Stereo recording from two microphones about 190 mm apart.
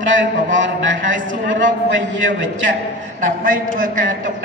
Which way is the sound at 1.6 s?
75° right (ahead or behind).